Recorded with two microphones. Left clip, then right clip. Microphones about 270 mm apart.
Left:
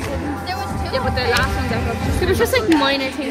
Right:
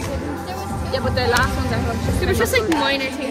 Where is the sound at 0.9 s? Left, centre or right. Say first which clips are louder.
Even; centre.